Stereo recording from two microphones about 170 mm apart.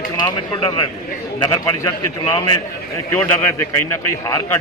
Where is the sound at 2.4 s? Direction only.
15° left (ahead or behind).